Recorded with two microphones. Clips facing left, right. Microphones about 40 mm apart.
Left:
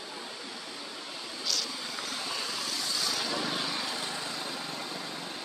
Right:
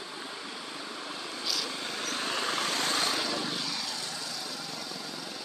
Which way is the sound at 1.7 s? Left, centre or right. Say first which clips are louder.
Right 2 dB; right.